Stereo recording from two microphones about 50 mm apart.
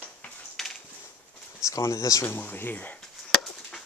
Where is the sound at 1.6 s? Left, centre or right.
Left.